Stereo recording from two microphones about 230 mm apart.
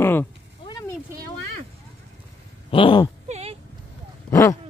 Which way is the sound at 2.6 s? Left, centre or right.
Left.